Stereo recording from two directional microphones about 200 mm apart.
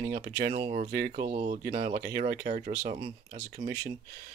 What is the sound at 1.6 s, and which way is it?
Speech, 45° right (ahead or behind).